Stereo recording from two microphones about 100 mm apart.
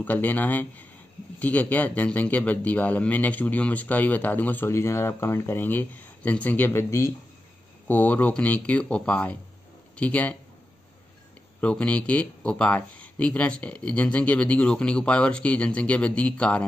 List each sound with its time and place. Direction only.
0.0 s speech: 15° left (ahead or behind)
7.9 s speech: 15° left (ahead or behind)
11.6 s speech: 10° left (ahead or behind)